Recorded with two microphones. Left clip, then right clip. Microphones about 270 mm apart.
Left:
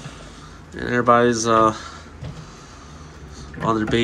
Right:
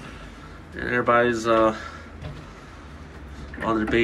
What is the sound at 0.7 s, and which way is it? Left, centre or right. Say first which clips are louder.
Speech: left 4 dB; centre.